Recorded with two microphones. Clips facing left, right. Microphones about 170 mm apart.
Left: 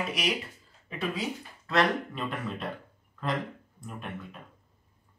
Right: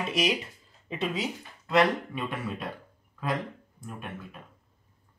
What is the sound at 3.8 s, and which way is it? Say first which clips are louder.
Speech: even; centre (ahead or behind).